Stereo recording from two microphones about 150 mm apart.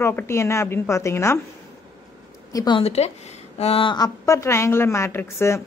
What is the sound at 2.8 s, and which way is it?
A woman's voice, 45° left (ahead or behind).